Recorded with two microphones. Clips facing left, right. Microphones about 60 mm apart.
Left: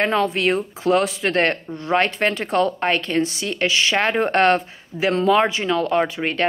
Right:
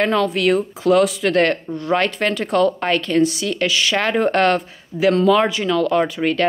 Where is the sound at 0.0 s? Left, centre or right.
Left.